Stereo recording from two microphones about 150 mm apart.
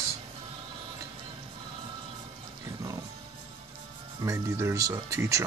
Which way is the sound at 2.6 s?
25° right (ahead or behind).